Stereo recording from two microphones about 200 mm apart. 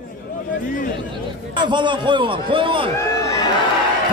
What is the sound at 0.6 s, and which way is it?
Speech, 40° left (ahead or behind).